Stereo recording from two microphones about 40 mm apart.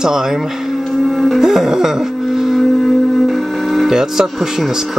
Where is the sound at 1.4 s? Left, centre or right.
Centre.